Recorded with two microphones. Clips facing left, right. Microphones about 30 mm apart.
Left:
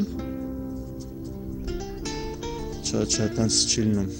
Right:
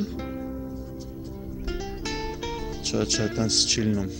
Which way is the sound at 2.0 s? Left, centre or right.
Centre.